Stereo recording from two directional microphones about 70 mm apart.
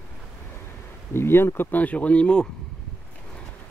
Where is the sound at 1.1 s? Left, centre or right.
Left; by 2.4 s centre.